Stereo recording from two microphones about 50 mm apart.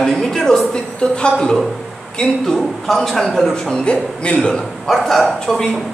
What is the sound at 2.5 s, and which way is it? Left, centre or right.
A man's voice, centre.